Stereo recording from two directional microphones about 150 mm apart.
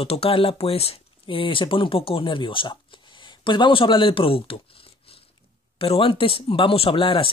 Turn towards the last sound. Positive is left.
turn(degrees=35)  # may be behind; listen again after turning